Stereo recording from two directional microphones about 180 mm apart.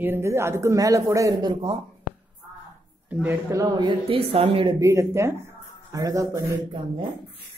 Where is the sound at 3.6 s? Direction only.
25° right (ahead or behind).